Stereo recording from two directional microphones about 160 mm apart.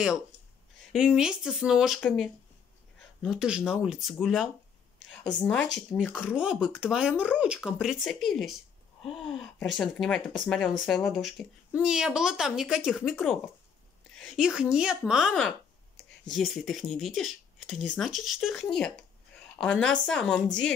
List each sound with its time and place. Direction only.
0.9 s speech: 5° right (ahead or behind)
6.1 s speech: 5° right (ahead or behind)
9.7 s speech: centre (ahead or behind)